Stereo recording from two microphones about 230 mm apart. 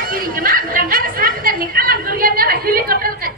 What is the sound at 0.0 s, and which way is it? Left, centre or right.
Speech, right.